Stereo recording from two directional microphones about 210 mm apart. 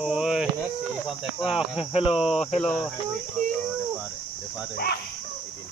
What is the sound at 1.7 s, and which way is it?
Speech, 30° left (ahead or behind).